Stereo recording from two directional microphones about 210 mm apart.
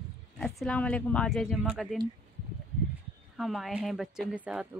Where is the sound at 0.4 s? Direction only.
5° left (ahead or behind).